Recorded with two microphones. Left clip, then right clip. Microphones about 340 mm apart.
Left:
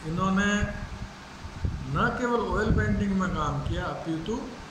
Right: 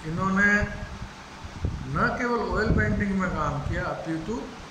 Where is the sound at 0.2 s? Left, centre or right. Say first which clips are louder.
Right 5 dB; centre.